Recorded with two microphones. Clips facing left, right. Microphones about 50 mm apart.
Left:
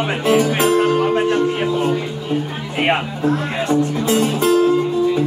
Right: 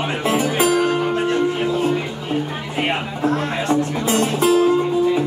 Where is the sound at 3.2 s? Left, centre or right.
Centre.